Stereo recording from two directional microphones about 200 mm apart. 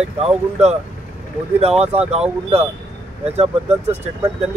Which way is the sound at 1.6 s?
30° right (ahead or behind).